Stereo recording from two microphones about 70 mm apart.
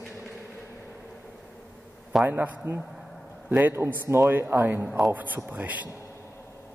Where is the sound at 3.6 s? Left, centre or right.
Right.